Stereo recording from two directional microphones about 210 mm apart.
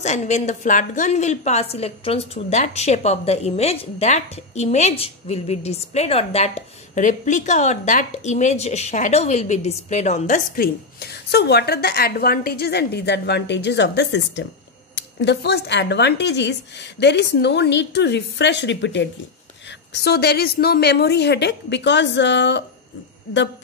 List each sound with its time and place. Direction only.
0.0 s a woman's voice: 35° left (ahead or behind); by 22.6 s 60° left (ahead or behind)